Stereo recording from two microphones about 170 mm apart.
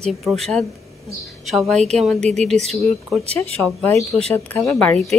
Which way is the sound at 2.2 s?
40° right (ahead or behind).